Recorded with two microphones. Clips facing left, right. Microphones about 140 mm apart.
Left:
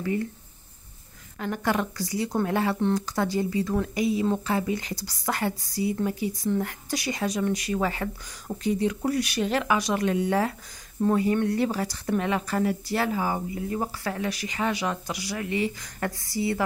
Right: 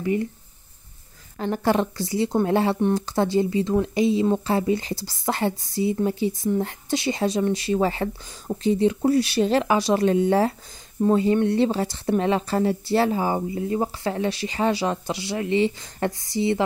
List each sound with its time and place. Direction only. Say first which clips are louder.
0.0 s speech: right 4 dB; 20° right (ahead or behind)
1.4 s speech: right 5 dB; 30° right (ahead or behind)